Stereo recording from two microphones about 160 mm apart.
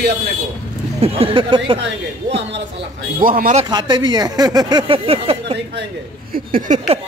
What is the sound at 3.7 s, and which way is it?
Speech, 25° right (ahead or behind).